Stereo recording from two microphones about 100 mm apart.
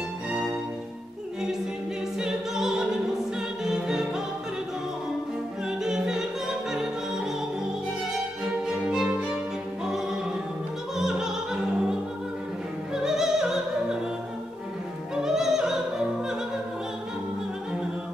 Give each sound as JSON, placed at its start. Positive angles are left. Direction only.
{"t": 0.3, "sound": "music", "side_deg": -10}
{"t": 2.1, "sound": "opera", "side_deg": -5}
{"t": 3.3, "sound": "music", "side_deg": -5}
{"t": 5.9, "sound": "music", "side_deg": -5}
{"t": 8.6, "sound": "music", "side_deg": -5}
{"t": 11.0, "sound": "music", "side_deg": -5}
{"t": 12.9, "sound": "opera", "side_deg": -5}
{"t": 15.2, "sound": "opera", "side_deg": -5}